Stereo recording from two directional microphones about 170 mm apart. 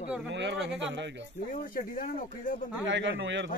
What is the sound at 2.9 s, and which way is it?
Speech, 90° right.